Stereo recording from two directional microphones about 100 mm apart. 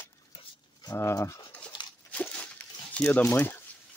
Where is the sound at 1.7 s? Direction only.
55° left (ahead or behind).